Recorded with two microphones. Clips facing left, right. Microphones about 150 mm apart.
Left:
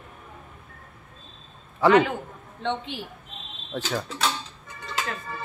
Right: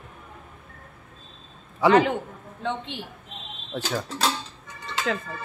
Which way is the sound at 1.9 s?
35° right (ahead or behind).